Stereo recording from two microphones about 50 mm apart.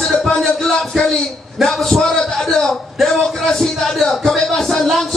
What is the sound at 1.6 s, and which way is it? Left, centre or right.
A man's voice, centre.